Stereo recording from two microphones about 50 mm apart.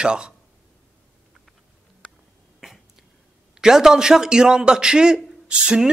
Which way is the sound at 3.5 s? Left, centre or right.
Centre.